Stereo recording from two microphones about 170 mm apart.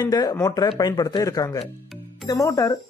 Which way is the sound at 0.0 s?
25° left (ahead or behind).